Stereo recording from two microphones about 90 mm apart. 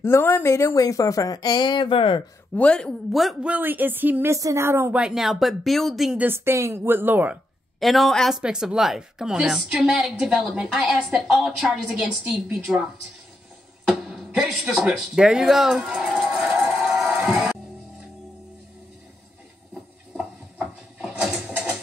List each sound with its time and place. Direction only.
0.0 s a woman's voice: 25° left (ahead or behind); by 2.2 s 70° left (ahead or behind)
2.5 s a woman's voice: 10° left (ahead or behind)
3.1 s a woman's voice: centre (ahead or behind)
3.4 s a woman's voice: 20° right (ahead or behind)
4.3 s speech: 35° right (ahead or behind)
4.9 s a woman's voice: 5° right (ahead or behind)
6.1 s a woman's voice: 25° right (ahead or behind)
7.8 s a woman's voice: centre (ahead or behind)
8.4 s a woman's voice: 10° right (ahead or behind)
13.8 s speech: 5° right (ahead or behind)
16.5 s music: centre (ahead or behind)
20.2 s a sound: 10° right (ahead or behind)